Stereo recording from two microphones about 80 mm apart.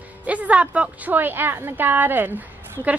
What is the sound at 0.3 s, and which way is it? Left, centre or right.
A woman's voice, centre.